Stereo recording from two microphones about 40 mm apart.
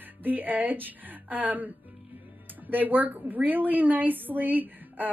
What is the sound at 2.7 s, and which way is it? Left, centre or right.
A woman's voice, right.